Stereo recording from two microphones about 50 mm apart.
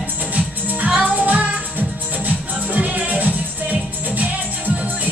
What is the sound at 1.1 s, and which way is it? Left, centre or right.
Music, right.